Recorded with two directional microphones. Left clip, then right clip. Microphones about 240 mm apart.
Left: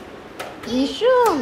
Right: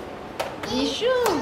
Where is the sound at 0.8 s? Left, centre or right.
Left.